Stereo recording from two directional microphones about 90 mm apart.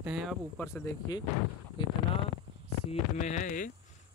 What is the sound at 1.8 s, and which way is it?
Speech, 65° left (ahead or behind).